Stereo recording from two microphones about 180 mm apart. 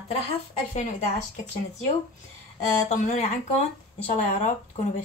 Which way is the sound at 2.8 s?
40° left (ahead or behind).